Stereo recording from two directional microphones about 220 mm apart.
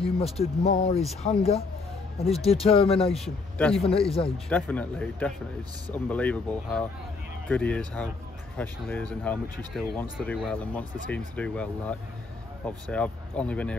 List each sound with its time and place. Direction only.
0.0 s speech: 25° left (ahead or behind)
3.2 s speech: 5° left (ahead or behind)
3.8 s speech: 25° left (ahead or behind)
4.5 s speech: 5° left (ahead or behind)